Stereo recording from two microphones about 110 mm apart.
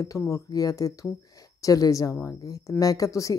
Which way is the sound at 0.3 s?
35° left (ahead or behind).